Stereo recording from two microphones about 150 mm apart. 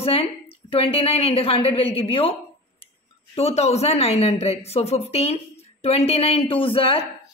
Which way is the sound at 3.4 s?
45° left (ahead or behind).